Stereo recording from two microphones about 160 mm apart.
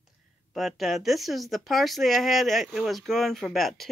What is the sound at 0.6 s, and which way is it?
Speech, centre (ahead or behind).